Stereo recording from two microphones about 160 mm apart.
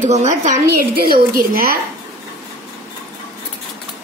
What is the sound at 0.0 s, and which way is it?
Speech, 45° right (ahead or behind).